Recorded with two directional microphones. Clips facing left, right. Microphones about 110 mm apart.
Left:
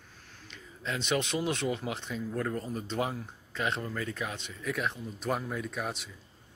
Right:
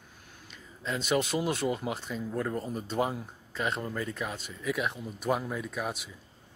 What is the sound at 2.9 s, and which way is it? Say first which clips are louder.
A man's voice: right 4 dB; 5° right (ahead or behind).